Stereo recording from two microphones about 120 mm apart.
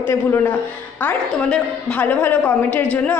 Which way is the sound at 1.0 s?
10° left (ahead or behind).